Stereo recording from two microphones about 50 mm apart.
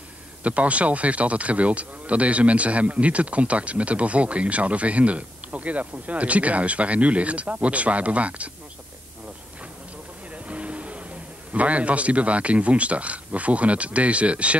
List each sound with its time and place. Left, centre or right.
0.4 s speech: right
10.3 s vehicle: right
11.5 s speech: right